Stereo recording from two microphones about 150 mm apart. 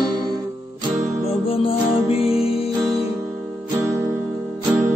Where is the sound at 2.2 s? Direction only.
40° left (ahead or behind).